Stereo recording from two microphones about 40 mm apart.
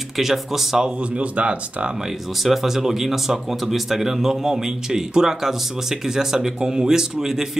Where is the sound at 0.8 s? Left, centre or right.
Right.